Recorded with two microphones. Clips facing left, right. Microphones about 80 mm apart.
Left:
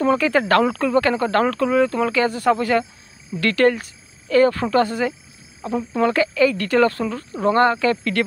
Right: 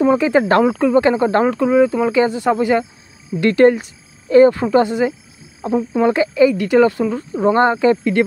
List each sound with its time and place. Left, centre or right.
0.0 s speech: centre